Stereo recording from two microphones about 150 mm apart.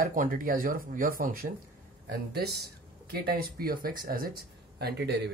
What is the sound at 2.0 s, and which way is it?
A woman's voice, 90° right.